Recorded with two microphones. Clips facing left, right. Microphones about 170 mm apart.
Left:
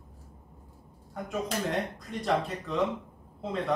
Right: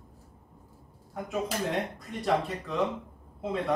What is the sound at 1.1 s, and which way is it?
Speech, centre (ahead or behind).